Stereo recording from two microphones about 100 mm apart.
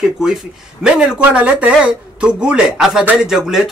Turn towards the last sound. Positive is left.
turn(degrees=-5)  # may be behind; listen again after turning